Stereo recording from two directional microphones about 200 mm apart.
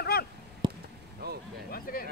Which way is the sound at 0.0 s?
50° left (ahead or behind).